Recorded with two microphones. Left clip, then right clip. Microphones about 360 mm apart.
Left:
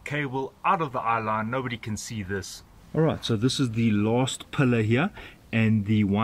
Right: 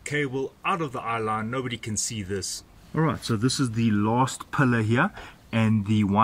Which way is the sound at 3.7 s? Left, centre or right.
Centre.